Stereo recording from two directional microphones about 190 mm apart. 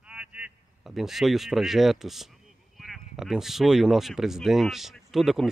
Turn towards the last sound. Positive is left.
turn(degrees=0)  # may be behind; listen again after turning